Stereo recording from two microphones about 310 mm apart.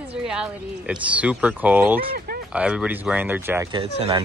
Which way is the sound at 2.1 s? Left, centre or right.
Right.